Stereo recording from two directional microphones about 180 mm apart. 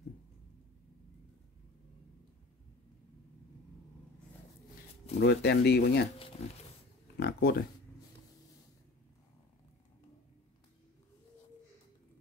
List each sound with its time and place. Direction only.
5.2 s speech: 70° left (ahead or behind)
7.2 s speech: 60° left (ahead or behind)